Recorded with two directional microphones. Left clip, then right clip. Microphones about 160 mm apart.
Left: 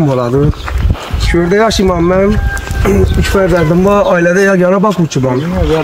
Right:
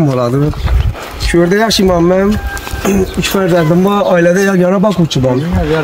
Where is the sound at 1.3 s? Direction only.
90° right.